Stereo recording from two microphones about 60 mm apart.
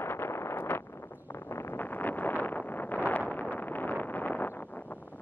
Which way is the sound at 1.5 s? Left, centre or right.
Left.